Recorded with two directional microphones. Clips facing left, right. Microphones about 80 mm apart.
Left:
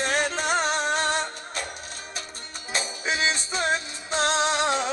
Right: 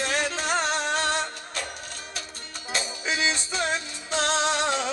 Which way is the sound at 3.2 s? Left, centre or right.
Left.